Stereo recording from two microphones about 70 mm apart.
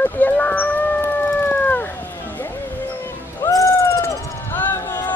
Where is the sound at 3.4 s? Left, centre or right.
Left.